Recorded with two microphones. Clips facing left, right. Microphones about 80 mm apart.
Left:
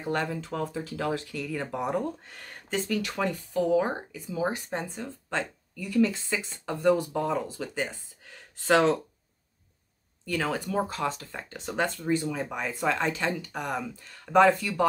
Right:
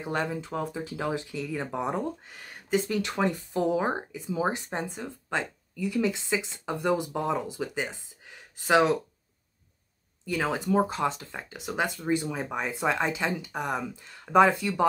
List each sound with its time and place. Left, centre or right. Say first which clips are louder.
0.0 s speech: even; centre
2.2 s speech: even; centre
2.9 s speech: right 1 dB; right
10.2 s speech: right 1 dB; centre
11.4 s speech: left 1 dB; centre